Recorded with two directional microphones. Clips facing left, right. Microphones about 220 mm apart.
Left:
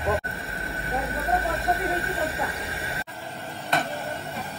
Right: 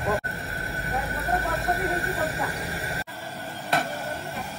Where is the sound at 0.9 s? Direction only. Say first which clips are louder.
Left 2 dB; centre (ahead or behind).